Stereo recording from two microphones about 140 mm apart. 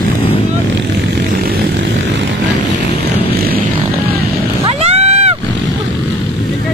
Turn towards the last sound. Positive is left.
turn(degrees=-50)  # may be behind; listen again after turning